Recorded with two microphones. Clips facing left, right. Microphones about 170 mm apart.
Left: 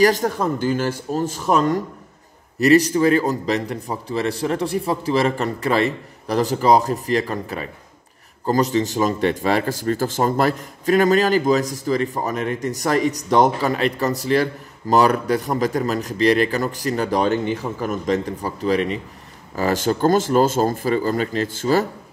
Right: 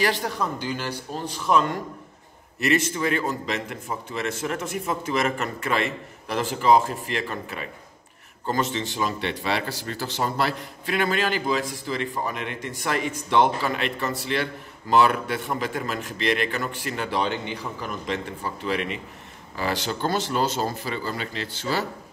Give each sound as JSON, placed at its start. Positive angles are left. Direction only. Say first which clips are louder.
{"t": 0.0, "sound": "a man's voice", "louder": "left 8 dB", "side_deg": 45}